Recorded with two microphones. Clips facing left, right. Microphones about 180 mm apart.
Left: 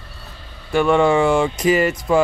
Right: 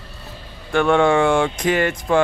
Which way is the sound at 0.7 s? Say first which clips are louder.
Left 1 dB; 5° left (ahead or behind).